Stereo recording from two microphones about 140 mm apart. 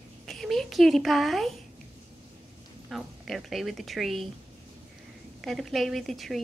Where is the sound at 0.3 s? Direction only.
Centre (ahead or behind).